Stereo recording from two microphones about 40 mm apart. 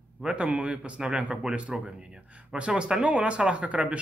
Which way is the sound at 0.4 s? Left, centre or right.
Right.